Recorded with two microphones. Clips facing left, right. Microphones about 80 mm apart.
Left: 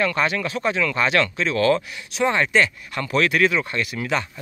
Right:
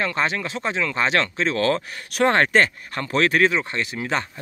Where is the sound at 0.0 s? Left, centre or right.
Right.